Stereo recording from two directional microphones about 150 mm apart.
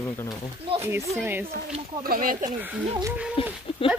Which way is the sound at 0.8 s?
20° right (ahead or behind).